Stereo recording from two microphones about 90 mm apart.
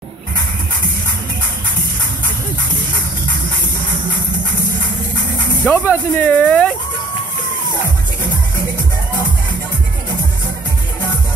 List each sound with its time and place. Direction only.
5.6 s speech: 25° left (ahead or behind)